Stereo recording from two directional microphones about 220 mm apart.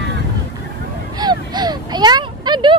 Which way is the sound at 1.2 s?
20° right (ahead or behind).